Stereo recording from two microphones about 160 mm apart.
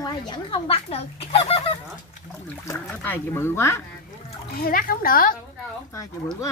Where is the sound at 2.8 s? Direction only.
10° left (ahead or behind).